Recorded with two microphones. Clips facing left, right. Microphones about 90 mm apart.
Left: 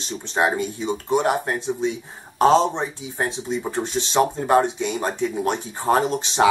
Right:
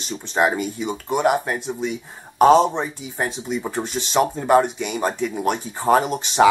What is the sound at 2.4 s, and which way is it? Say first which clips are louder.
Speech: right 3 dB; 15° right (ahead or behind).